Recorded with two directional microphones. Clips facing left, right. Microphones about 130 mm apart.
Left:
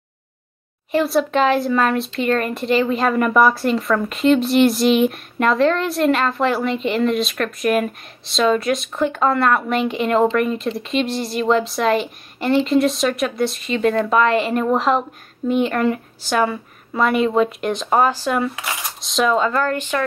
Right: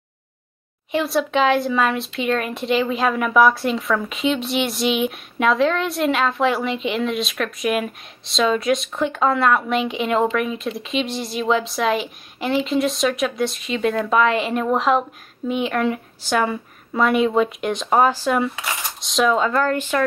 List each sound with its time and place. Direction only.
0.9 s speech: centre (ahead or behind)
19.6 s a woman's voice: 20° right (ahead or behind)